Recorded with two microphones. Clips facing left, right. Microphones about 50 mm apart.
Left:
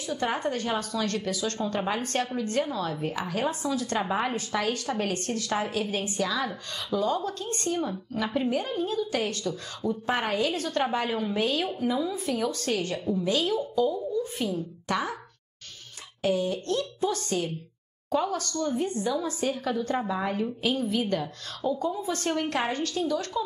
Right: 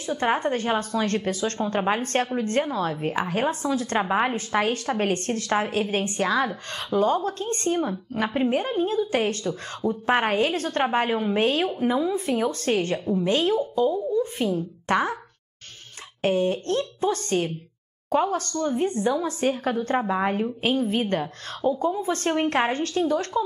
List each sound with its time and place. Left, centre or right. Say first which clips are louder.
0.0 s a woman's voice: right 5 dB; right
16.2 s a woman's voice: right 4 dB; right